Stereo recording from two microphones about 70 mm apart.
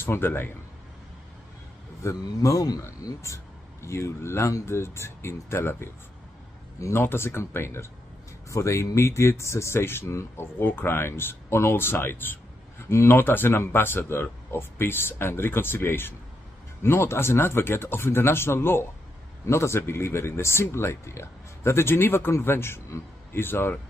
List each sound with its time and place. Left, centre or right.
0.0 s speech: left
2.4 s speech: left
3.8 s a man's voice: left